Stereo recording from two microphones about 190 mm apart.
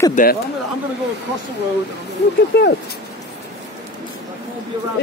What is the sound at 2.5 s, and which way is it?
Speech, 60° left (ahead or behind).